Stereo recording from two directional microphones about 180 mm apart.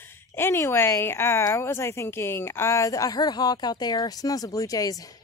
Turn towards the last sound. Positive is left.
turn(degrees=20)  # may be behind; listen again after turning